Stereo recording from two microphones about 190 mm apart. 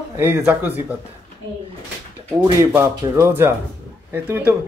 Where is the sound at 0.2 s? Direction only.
10° right (ahead or behind).